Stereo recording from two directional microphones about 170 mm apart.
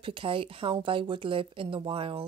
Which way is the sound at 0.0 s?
30° right (ahead or behind).